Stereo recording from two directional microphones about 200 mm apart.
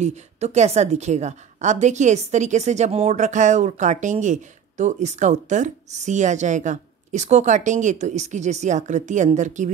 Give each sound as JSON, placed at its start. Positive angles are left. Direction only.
{"t": 0.0, "sound": "a woman's voice", "side_deg": -35}